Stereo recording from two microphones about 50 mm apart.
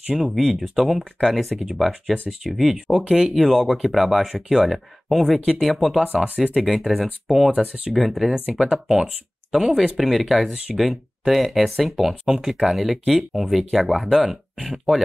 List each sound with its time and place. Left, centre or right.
0.1 s speech: centre
3.4 s speech: centre
6.2 s speech: centre
6.6 s speech: centre
8.5 s speech: centre